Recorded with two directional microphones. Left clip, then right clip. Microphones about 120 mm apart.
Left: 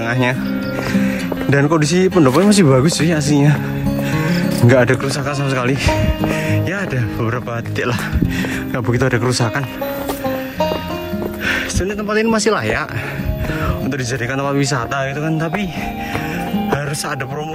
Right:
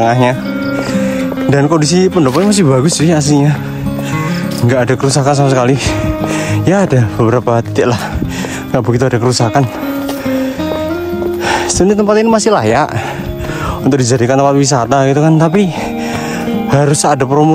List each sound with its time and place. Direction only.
0.0 s speech: 20° right (ahead or behind)
3.0 s speech: 20° right (ahead or behind)
4.3 s music: 5° right (ahead or behind)
5.0 s speech: 30° right (ahead or behind)
8.7 s speech: 15° right (ahead or behind)
11.4 s music: 35° right (ahead or behind)
12.1 s speech: 20° right (ahead or behind)
13.8 s speech: 35° right (ahead or behind)
15.0 s speech: 40° right (ahead or behind)
16.7 s speech: 35° right (ahead or behind)